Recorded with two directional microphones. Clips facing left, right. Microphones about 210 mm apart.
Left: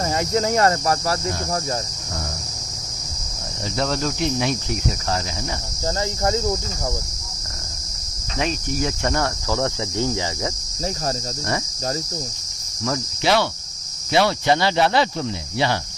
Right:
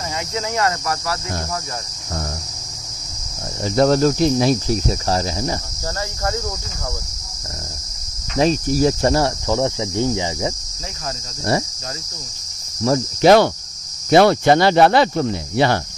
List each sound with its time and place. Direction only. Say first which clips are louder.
0.0 s speech: left 5 dB; 45° left (ahead or behind)
3.7 s speech: right 9 dB; 45° right (ahead or behind)
6.2 s speech: left 3 dB; 20° left (ahead or behind)
8.4 s speech: right 8 dB; 35° right (ahead or behind)
9.5 s speech: right 4 dB; 20° right (ahead or behind)
12.8 s speech: right 9 dB; 40° right (ahead or behind)